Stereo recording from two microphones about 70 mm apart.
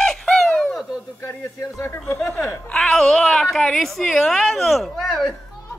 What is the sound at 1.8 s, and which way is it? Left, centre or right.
Speech, left.